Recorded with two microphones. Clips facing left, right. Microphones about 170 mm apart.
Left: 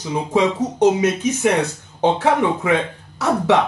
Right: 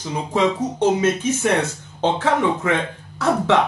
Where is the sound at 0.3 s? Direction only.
15° left (ahead or behind).